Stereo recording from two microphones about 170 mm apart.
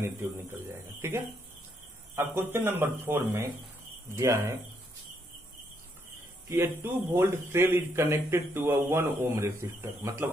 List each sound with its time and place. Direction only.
0.0 s a man's voice: 15° right (ahead or behind)
6.5 s a man's voice: 15° right (ahead or behind)